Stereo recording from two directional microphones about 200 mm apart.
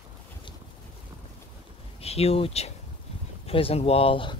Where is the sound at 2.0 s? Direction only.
30° left (ahead or behind).